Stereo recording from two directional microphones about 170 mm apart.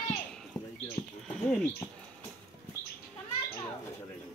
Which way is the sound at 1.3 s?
5° left (ahead or behind).